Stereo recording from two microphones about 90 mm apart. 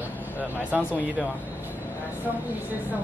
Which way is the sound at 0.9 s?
15° left (ahead or behind).